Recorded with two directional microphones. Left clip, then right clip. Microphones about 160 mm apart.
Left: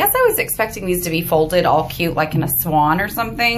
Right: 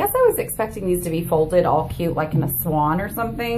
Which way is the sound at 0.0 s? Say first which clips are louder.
Left 2 dB; 10° right (ahead or behind).